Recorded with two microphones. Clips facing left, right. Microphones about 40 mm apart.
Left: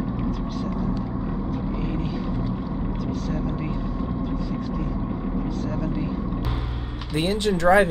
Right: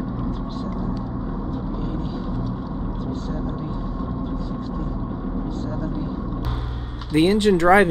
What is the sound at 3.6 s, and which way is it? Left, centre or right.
Vehicle, left.